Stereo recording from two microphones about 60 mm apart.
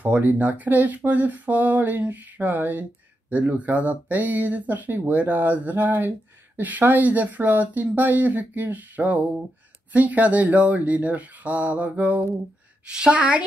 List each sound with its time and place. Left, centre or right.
0.0 s speech: right
12.9 s speech: centre